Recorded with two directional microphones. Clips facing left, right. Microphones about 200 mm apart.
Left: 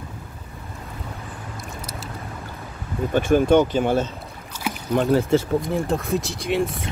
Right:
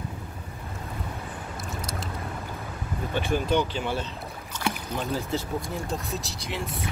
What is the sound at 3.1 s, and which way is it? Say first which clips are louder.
Speech: left 9 dB; 50° left (ahead or behind).